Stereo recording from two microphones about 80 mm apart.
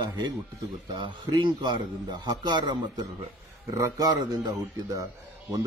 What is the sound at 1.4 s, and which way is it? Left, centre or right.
A man's voice, right.